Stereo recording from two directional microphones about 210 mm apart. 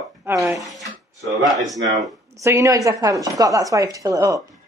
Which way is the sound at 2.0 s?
15° right (ahead or behind).